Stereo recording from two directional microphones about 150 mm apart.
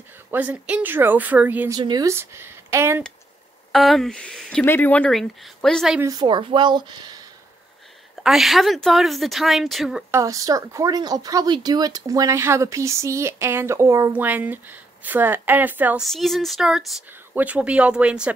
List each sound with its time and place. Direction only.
0.3 s speech: 10° right (ahead or behind)
1.7 s speech: 25° right (ahead or behind)
3.7 s speech: centre (ahead or behind)
5.9 s speech: 25° right (ahead or behind)
8.2 s speech: centre (ahead or behind)
10.1 s speech: 20° right (ahead or behind)
16.0 s speech: centre (ahead or behind)